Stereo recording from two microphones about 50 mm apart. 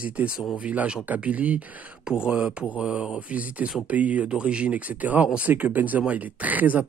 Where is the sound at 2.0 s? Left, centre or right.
Centre.